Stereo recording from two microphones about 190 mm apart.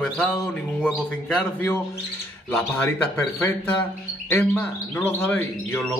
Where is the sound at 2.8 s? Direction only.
15° left (ahead or behind).